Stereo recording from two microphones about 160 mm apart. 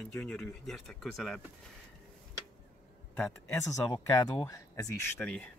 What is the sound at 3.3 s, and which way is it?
Speech, 20° left (ahead or behind).